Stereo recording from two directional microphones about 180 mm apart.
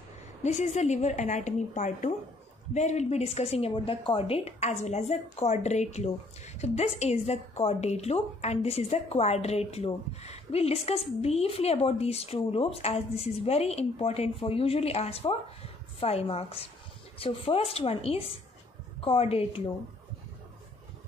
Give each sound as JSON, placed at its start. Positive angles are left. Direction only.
{"t": 0.4, "sound": "a woman's voice", "side_deg": 40}